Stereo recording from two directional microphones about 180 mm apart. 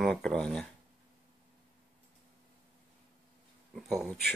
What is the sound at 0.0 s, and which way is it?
Speech, 5° left (ahead or behind).